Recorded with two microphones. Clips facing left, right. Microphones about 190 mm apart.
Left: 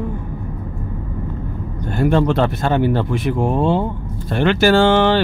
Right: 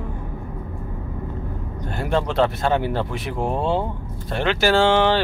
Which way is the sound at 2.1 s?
50° left (ahead or behind).